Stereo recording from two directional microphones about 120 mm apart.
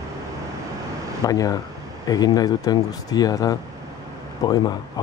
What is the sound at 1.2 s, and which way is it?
Speech, 30° left (ahead or behind).